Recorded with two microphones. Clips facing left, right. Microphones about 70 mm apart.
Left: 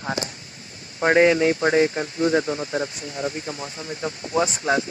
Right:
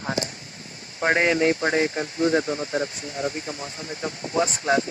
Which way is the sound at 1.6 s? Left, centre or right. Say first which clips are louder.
Left 3 dB; left.